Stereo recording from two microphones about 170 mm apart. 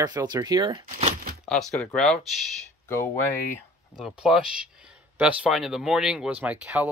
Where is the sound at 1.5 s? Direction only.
Centre (ahead or behind).